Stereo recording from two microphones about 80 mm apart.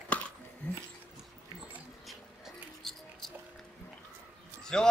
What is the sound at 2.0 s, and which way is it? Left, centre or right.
Music, centre.